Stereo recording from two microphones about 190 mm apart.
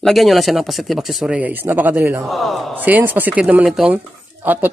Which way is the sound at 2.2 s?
Centre (ahead or behind).